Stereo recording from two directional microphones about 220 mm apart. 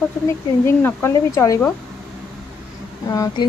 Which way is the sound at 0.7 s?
10° left (ahead or behind).